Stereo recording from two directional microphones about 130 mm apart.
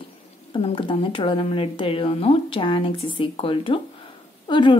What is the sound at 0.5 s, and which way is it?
A woman's voice, 40° left (ahead or behind).